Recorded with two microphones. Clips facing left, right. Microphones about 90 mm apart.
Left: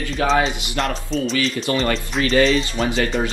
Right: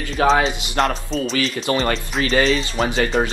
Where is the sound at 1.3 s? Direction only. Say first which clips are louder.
Right 2 dB; 40° right (ahead or behind).